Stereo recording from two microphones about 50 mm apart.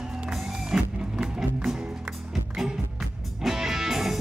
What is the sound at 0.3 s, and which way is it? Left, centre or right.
Music, centre.